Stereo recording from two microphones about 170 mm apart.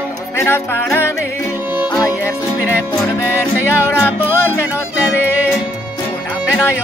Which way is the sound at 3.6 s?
15° left (ahead or behind).